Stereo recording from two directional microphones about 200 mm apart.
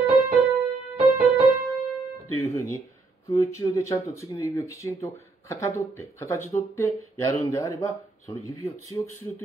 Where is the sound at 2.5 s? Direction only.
15° left (ahead or behind).